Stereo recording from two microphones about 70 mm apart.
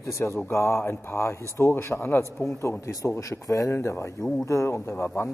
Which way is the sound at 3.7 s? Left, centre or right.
Left.